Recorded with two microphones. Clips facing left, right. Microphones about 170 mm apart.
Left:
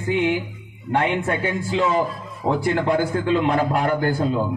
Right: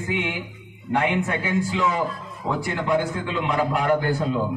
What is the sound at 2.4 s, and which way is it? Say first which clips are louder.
Speech: left 5 dB; 55° left (ahead or behind).